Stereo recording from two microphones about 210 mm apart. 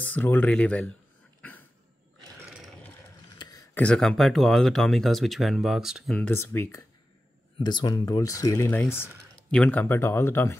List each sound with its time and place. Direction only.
0.0 s speech: 10° left (ahead or behind)
2.4 s roar: 5° right (ahead or behind)
3.3 s a sound: 20° left (ahead or behind)
3.7 s speech: 5° left (ahead or behind)